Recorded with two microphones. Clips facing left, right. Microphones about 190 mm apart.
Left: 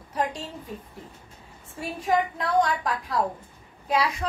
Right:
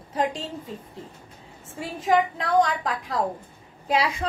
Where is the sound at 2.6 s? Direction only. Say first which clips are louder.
Even; 20° right (ahead or behind).